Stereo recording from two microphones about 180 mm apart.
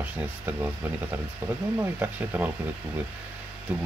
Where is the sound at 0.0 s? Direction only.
10° right (ahead or behind).